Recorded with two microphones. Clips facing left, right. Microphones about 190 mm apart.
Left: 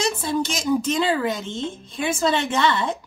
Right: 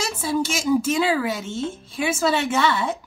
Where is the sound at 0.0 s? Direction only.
5° right (ahead or behind).